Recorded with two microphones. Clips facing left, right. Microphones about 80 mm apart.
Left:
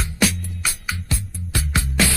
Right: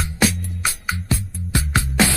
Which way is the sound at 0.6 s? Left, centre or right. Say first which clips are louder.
Right 3 dB; right.